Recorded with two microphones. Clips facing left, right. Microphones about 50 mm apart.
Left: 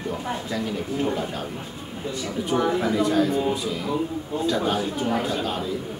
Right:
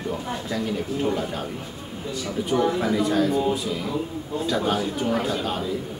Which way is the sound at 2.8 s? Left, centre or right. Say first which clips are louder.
Even; centre.